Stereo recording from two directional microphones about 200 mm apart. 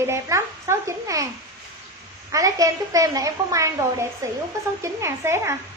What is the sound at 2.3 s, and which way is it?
Speech, 15° right (ahead or behind).